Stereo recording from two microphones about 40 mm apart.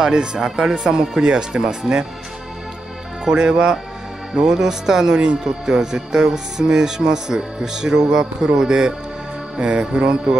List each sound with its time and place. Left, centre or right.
0.0 s speech: right
1.2 s music: right
3.4 s music: right
4.4 s speech: centre
9.6 s music: right